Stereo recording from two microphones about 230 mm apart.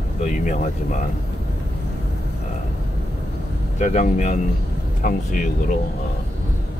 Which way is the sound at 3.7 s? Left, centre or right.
Left.